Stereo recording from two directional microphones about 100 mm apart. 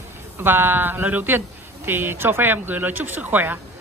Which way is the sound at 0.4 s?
20° right (ahead or behind).